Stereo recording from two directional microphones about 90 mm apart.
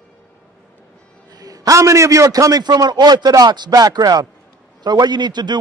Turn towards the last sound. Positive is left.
turn(degrees=-55)  # may be behind; listen again after turning